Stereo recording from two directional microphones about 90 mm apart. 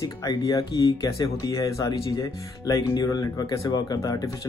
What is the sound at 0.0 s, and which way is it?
Speech, 40° left (ahead or behind).